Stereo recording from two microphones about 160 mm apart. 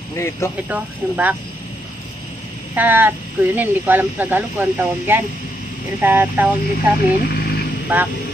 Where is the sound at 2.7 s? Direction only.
10° right (ahead or behind).